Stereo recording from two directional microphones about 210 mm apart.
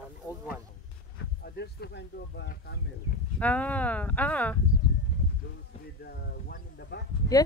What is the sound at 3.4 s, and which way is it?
Speech, 5° left (ahead or behind).